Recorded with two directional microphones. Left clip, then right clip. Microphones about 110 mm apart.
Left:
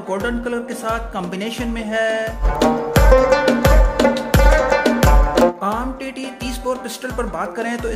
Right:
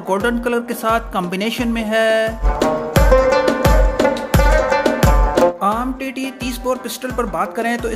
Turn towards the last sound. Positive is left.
turn(degrees=-35)  # may be behind; listen again after turning